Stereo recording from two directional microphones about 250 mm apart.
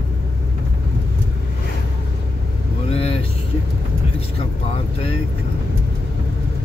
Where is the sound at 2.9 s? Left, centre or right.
Left.